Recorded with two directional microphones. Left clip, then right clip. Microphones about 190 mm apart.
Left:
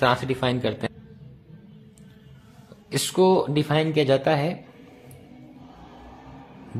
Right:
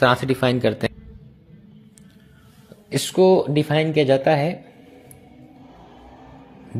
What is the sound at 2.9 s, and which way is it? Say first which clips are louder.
Speech: right 4 dB; 10° right (ahead or behind).